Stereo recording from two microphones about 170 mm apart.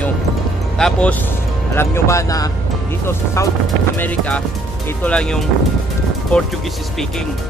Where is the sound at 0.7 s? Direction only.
5° left (ahead or behind).